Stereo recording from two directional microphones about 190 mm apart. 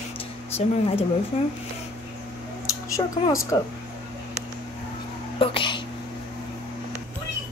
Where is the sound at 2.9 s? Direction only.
15° left (ahead or behind).